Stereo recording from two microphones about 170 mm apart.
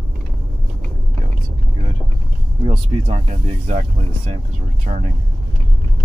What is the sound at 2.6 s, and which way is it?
Speech, 35° right (ahead or behind).